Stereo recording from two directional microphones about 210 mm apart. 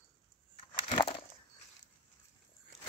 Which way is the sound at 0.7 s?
25° left (ahead or behind).